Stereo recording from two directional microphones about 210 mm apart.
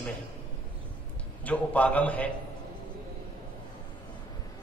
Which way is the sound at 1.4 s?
5° left (ahead or behind).